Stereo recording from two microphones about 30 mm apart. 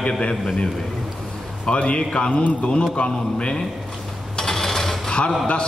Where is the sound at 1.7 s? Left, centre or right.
Left.